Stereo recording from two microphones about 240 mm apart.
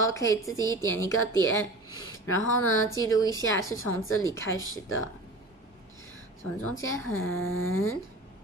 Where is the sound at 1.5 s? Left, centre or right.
Left.